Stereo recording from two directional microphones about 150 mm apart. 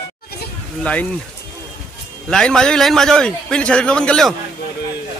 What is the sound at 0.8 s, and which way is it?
Speech, 10° left (ahead or behind).